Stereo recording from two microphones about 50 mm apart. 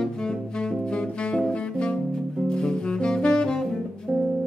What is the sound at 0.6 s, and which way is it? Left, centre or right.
Music, centre.